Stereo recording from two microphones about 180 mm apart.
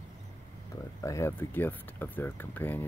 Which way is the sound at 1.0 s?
15° left (ahead or behind).